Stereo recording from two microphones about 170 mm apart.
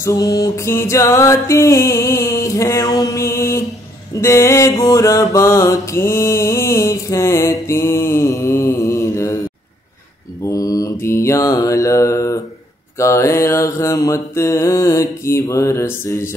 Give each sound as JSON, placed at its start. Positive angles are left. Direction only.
{"t": 0.0, "sound": "music", "side_deg": 20}
{"t": 4.2, "sound": "mantra", "side_deg": 15}
{"t": 10.5, "sound": "mantra", "side_deg": 20}
{"t": 12.9, "sound": "music", "side_deg": 15}